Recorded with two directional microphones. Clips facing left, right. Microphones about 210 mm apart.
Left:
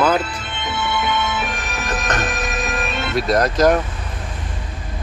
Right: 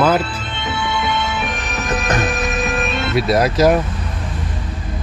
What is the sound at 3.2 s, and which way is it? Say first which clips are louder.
Speech: right 2 dB; 5° right (ahead or behind).